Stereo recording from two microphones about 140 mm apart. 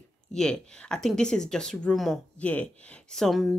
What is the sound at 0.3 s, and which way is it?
A woman's voice, 5° left (ahead or behind).